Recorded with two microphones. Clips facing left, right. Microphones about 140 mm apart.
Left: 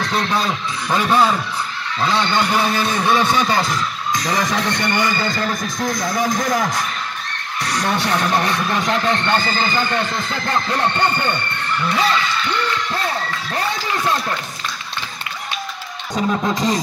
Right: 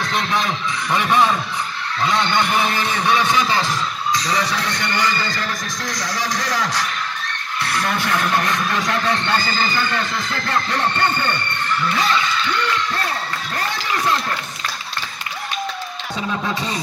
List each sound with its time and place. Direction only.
0.1 s a man's voice: 35° left (ahead or behind)
0.8 s a man's voice: 5° left (ahead or behind)
3.3 s speech: 45° left (ahead or behind)
7.6 s a man's voice: 35° left (ahead or behind)
16.2 s a man's voice: 40° left (ahead or behind)